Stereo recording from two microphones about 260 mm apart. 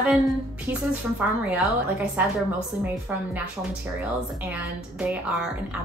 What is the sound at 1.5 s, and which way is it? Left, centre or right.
Speech, centre.